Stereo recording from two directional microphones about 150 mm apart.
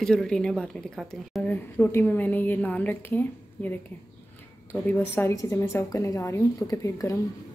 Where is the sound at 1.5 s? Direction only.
15° left (ahead or behind).